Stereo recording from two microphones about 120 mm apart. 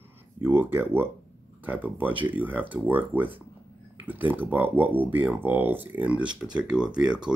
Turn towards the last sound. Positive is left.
turn(degrees=-5)  # may be behind; listen again after turning